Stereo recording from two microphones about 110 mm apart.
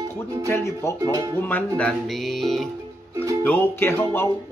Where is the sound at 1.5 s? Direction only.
10° left (ahead or behind).